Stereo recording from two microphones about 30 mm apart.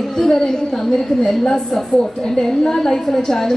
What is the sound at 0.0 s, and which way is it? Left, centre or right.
A woman's voice, centre.